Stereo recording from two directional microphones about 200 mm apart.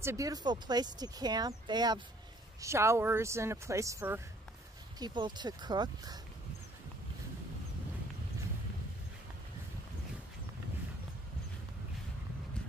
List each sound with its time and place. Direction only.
0.0 s speech: 15° right (ahead or behind)